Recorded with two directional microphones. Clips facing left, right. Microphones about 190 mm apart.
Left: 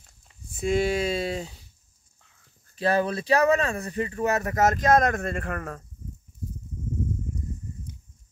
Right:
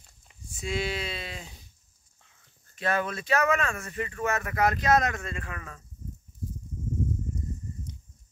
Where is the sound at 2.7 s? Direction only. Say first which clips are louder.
Left 5 dB; 35° left (ahead or behind); by 5.9 s 55° left (ahead or behind).